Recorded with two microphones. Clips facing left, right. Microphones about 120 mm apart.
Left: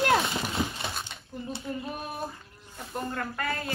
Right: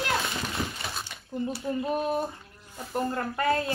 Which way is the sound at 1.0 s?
25° left (ahead or behind).